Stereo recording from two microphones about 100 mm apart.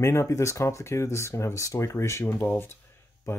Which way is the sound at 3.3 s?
30° left (ahead or behind).